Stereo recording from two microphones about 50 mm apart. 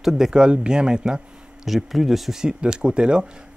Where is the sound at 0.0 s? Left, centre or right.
Centre.